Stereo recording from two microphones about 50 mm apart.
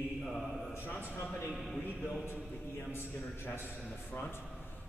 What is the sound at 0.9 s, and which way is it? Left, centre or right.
Speech, left.